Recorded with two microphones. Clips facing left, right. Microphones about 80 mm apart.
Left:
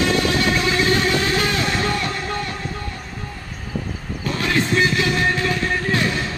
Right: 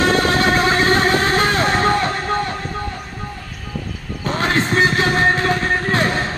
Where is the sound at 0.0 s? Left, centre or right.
Right.